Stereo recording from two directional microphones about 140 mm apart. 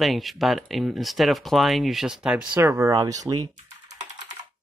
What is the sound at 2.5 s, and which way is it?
Speech, 20° right (ahead or behind).